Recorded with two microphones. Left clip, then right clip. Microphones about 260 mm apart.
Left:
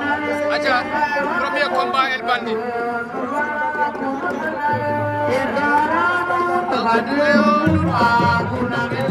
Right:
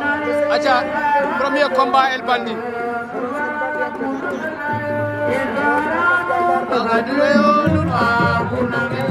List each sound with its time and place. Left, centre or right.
0.5 s music: centre
1.4 s speech: right
6.7 s music: right